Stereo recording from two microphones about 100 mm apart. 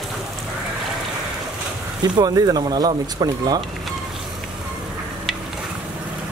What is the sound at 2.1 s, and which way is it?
Speech, 40° right (ahead or behind).